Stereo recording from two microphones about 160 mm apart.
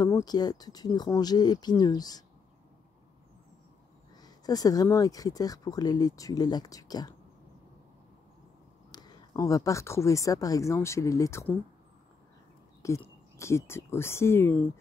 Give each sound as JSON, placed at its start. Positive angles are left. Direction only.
{"t": 0.0, "sound": "speech", "side_deg": 25}
{"t": 4.2, "sound": "speech", "side_deg": 25}
{"t": 8.9, "sound": "speech", "side_deg": 25}
{"t": 12.8, "sound": "speech", "side_deg": 20}